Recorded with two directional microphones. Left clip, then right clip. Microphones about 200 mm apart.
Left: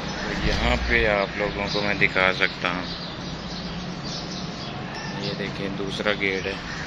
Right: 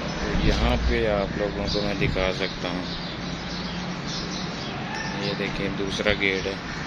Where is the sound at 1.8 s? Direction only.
10° right (ahead or behind).